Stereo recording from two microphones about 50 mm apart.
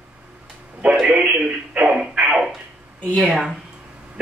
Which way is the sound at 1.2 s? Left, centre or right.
Right.